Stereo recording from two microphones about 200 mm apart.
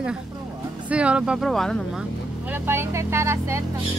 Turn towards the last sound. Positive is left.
turn(degrees=-15)  # may be behind; listen again after turning